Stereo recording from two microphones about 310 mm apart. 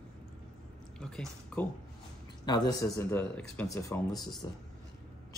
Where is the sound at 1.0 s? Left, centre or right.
Centre.